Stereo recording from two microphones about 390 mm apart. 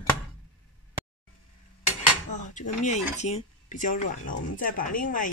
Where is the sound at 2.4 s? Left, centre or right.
Centre.